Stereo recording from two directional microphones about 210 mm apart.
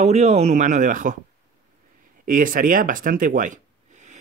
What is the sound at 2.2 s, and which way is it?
Speech, 40° right (ahead or behind).